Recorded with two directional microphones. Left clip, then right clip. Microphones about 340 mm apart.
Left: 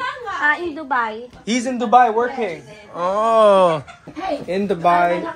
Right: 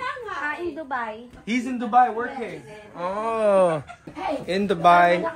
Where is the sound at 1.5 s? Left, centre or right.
Centre.